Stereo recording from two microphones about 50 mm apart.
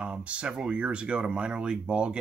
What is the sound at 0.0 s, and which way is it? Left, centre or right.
Speech, right.